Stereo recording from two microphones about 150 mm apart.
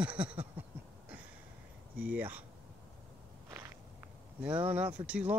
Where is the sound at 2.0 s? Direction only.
10° right (ahead or behind).